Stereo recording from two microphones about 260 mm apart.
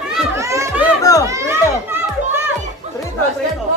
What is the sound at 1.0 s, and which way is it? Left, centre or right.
Children playing, centre.